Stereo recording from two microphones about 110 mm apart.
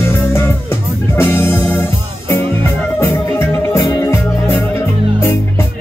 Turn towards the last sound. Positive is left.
turn(degrees=20)  # may be behind; listen again after turning